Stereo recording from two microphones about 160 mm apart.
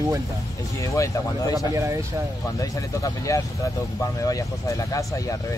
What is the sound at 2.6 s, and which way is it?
Speech, 20° left (ahead or behind).